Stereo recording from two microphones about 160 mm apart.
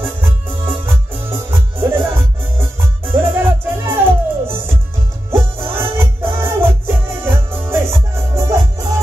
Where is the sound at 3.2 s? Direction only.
15° right (ahead or behind).